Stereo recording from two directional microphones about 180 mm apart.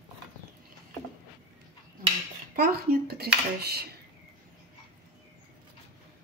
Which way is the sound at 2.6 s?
60° right (ahead or behind).